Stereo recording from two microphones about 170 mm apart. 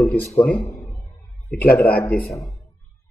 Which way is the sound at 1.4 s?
10° left (ahead or behind).